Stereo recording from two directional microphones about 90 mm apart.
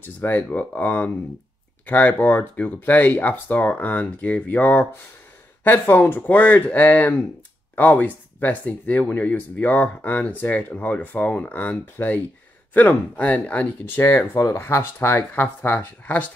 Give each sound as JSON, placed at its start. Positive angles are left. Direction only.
{"t": 0.0, "sound": "speech", "side_deg": 20}